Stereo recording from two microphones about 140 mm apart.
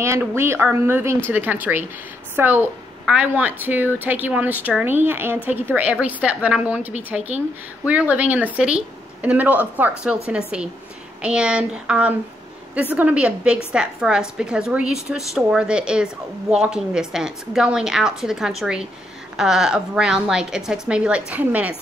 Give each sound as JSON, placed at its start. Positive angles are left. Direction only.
{"t": 0.0, "sound": "a woman's voice", "side_deg": -20}